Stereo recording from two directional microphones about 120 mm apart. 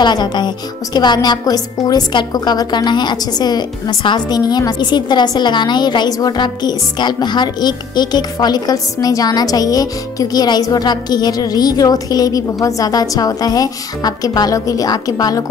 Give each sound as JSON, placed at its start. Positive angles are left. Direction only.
{"t": 0.0, "sound": "a woman's voice", "side_deg": 35}